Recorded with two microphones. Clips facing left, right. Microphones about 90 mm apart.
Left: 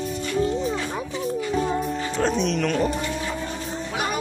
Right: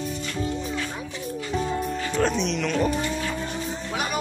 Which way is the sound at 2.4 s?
45° left (ahead or behind).